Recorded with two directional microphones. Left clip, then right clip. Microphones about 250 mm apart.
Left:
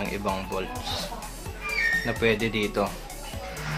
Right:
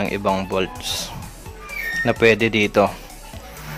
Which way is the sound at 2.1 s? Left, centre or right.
Right.